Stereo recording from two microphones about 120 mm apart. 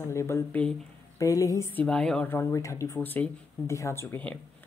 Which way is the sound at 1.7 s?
5° left (ahead or behind).